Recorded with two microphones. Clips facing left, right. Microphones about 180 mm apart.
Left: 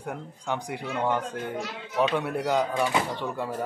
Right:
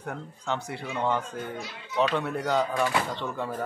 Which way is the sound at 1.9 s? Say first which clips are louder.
Left 1 dB; 10° left (ahead or behind).